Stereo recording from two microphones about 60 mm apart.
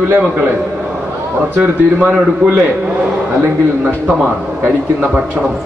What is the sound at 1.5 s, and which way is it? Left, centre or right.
Speech, right.